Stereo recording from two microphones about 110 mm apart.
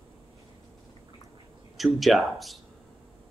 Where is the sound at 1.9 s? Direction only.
Centre (ahead or behind).